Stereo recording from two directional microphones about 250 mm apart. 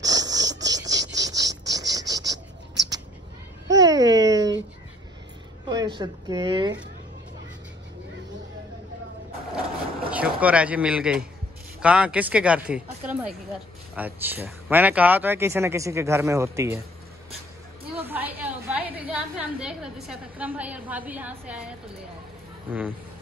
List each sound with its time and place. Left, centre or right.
0.0 s a sound: centre
5.7 s a woman's voice: centre
10.1 s speech: centre
18.0 s a woman's voice: centre